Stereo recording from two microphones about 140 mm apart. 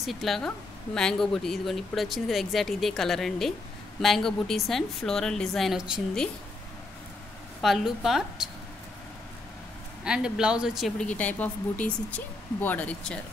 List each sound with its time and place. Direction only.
0.0 s speech: centre (ahead or behind)
7.6 s speech: centre (ahead or behind)
10.0 s speech: 5° right (ahead or behind); by 13.2 s 10° left (ahead or behind)